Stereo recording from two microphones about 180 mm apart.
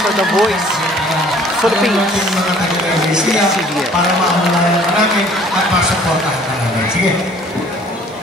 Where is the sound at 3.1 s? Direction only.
Centre (ahead or behind).